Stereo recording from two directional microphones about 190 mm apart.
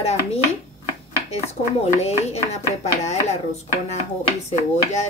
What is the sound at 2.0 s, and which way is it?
A woman's voice, 35° left (ahead or behind).